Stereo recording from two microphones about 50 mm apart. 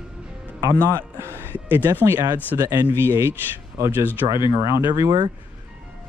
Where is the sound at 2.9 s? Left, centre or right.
Right.